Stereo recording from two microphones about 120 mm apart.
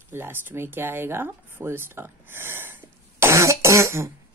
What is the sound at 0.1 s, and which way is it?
Speech, 20° right (ahead or behind).